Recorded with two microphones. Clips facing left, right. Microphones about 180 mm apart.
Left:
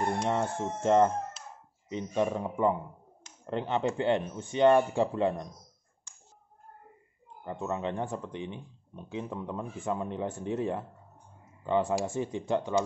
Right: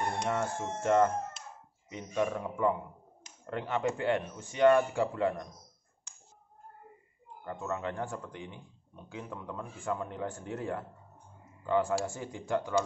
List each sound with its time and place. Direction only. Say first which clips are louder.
0.3 s speech: left 3 dB; 25° left (ahead or behind)
7.4 s speech: left 3 dB; 20° left (ahead or behind)